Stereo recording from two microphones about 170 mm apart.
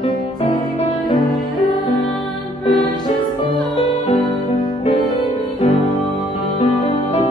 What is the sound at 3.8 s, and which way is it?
Music, 35° left (ahead or behind).